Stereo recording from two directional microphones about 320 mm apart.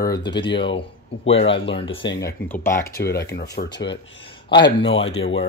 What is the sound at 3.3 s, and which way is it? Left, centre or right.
Speech, left.